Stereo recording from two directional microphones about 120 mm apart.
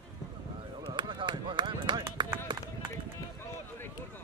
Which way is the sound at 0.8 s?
40° right (ahead or behind).